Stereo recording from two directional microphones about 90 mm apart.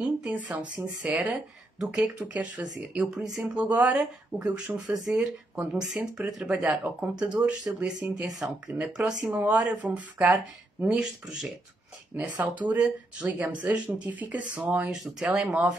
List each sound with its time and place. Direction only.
0.0 s speech: 15° right (ahead or behind)
1.8 s speech: 5° right (ahead or behind)
2.1 s speech: 15° right (ahead or behind)
3.6 s speech: 15° right (ahead or behind)
5.9 s speech: 15° right (ahead or behind)
14.9 s speech: 5° right (ahead or behind)